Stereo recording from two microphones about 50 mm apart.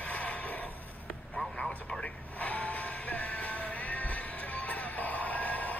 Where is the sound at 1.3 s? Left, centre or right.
Centre.